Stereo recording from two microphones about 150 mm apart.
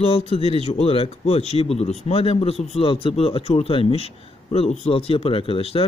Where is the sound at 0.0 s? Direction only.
40° left (ahead or behind).